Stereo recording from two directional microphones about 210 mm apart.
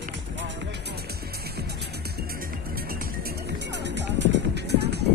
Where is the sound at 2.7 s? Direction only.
45° right (ahead or behind).